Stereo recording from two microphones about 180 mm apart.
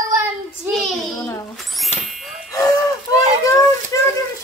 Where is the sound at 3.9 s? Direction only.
15° left (ahead or behind).